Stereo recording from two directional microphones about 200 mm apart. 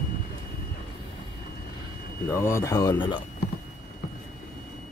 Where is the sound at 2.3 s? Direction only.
15° left (ahead or behind).